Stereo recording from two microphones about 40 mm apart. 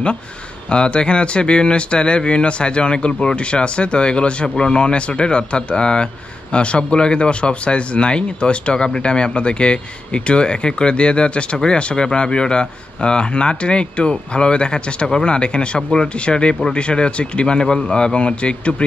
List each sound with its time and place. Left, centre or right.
0.7 s speech: left